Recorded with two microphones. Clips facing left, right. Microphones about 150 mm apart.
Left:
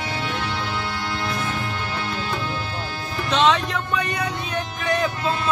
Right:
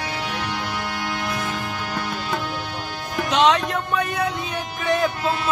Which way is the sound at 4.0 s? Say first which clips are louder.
Right 4 dB; centre (ahead or behind).